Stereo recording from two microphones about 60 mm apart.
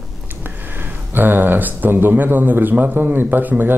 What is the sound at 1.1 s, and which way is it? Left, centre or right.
Speech, right.